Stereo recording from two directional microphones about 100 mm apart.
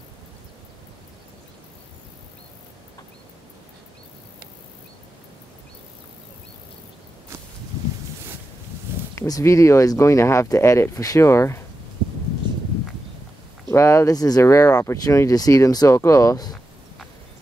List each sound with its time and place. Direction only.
9.1 s speech: 30° left (ahead or behind)
13.7 s speech: 30° left (ahead or behind)